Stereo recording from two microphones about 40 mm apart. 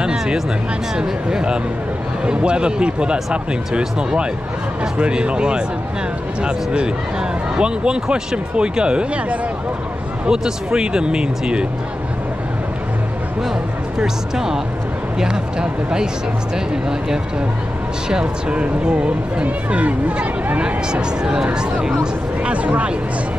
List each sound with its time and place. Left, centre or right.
0.0 s a sound: right
0.9 s speech: right
4.9 s speech: right
10.2 s speech: centre
13.9 s speech: centre
18.2 s speech: right
20.9 s speech: centre
22.4 s speech: right